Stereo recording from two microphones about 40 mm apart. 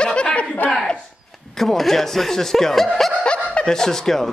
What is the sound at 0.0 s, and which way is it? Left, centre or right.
Chuckle, left.